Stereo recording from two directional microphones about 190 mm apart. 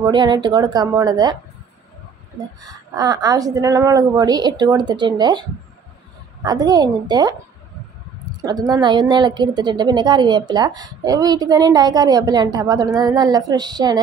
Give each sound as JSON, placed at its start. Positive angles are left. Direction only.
{"t": 0.0, "sound": "a woman's voice", "side_deg": -25}
{"t": 2.6, "sound": "a woman's voice", "side_deg": -20}
{"t": 8.5, "sound": "a woman's voice", "side_deg": -20}